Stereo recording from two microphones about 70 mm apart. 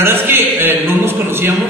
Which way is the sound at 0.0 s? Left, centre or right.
Right.